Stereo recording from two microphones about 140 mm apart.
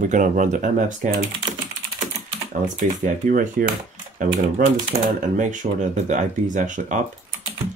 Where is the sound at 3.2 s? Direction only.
75° right (ahead or behind).